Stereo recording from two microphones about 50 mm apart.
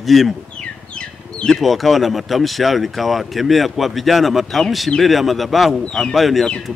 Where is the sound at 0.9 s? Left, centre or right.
Left.